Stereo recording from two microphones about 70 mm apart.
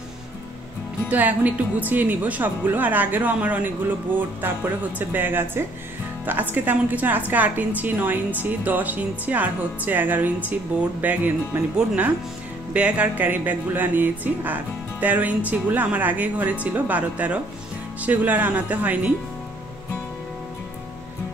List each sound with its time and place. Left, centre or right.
1.0 s speech: right